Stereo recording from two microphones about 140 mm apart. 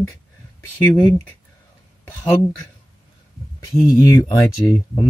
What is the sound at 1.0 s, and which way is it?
Speech, 30° left (ahead or behind).